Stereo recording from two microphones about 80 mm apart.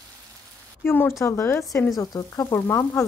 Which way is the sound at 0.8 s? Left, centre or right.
Left.